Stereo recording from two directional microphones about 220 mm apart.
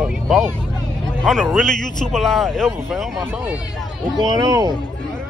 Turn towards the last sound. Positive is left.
turn(degrees=-15)  # may be behind; listen again after turning